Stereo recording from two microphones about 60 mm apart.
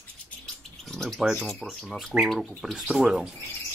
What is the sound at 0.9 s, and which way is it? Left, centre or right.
Speech, centre.